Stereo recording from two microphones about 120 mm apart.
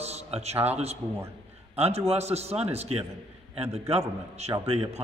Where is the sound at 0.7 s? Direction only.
60° right (ahead or behind).